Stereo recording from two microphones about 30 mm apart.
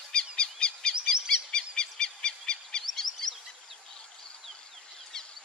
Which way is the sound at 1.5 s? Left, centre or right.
Left.